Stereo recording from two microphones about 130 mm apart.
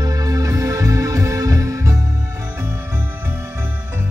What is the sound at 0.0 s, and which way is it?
Music, 25° right (ahead or behind).